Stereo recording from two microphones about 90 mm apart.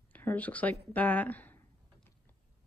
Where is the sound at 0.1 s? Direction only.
20° left (ahead or behind).